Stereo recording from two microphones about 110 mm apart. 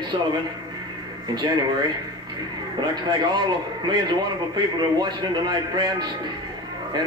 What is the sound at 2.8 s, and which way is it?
A man's voice, 40° right (ahead or behind).